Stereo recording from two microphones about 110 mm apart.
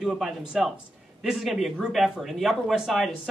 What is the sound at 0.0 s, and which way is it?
Speech, 5° right (ahead or behind).